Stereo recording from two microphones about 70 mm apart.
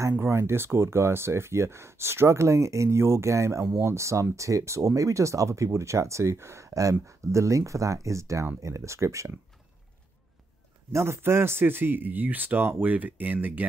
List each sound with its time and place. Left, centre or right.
0.2 s speech: right
10.9 s speech: right